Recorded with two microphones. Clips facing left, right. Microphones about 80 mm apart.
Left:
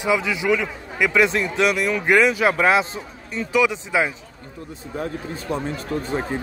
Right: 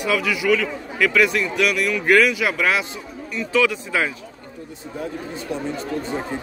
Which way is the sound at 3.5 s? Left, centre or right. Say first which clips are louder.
Even; centre.